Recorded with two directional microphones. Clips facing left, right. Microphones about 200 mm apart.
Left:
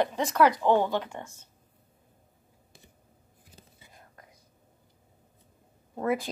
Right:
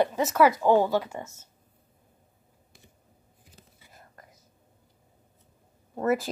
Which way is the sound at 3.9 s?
5° right (ahead or behind).